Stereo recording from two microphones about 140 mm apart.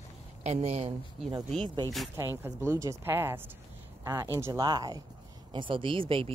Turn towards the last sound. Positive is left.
turn(degrees=-40)  # may be behind; listen again after turning